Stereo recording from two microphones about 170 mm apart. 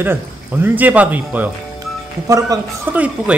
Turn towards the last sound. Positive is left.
turn(degrees=-10)  # may be behind; listen again after turning